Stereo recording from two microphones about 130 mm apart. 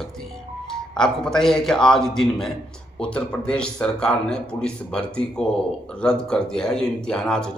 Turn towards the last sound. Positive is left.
turn(degrees=5)  # may be behind; listen again after turning